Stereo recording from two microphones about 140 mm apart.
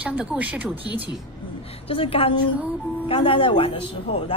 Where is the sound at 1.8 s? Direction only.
40° left (ahead or behind).